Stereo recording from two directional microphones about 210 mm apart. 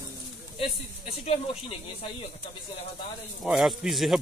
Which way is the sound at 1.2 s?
30° left (ahead or behind).